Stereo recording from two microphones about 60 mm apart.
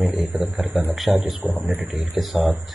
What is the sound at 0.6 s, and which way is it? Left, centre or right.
Speech, right.